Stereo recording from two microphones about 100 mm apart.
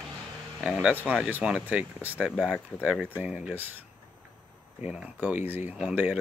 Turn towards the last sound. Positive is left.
turn(degrees=-15)  # may be behind; listen again after turning